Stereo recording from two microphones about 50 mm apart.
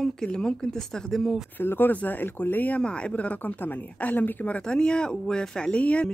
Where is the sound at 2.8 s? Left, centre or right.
Left.